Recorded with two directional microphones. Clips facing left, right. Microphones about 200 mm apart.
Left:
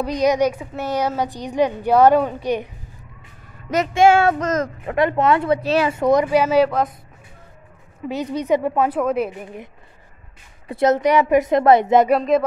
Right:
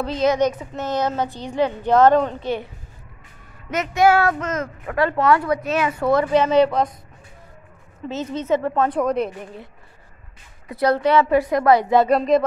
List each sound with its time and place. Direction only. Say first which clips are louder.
0.0 s a woman's voice: left 1 dB; 15° left (ahead or behind)
3.7 s speech: left 2 dB; 30° left (ahead or behind)
4.4 s speech: left 4 dB; 40° left (ahead or behind)
4.8 s speech: even; 20° left (ahead or behind); by 6.9 s 5° left (ahead or behind)
8.1 s a woman's voice: left 2 dB; 15° left (ahead or behind)
10.7 s speech: left 1 dB; 20° left (ahead or behind)
12.1 s speech: even; 5° left (ahead or behind)